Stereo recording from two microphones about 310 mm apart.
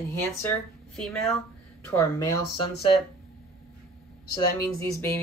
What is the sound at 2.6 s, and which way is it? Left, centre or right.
Speech, centre.